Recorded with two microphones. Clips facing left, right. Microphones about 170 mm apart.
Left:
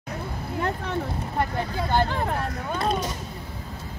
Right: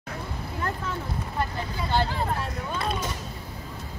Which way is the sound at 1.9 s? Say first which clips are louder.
Left 1 dB; 50° left (ahead or behind).